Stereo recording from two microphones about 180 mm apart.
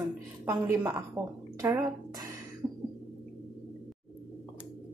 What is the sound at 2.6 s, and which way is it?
Cough, 15° right (ahead or behind).